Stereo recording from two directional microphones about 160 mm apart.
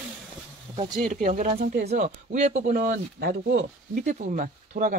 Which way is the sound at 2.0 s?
50° right (ahead or behind).